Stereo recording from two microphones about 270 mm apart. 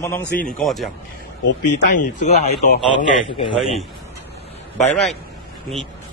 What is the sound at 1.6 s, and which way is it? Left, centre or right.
Speech, left.